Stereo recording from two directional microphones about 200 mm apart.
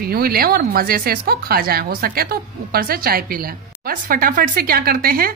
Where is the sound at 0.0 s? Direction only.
50° right (ahead or behind).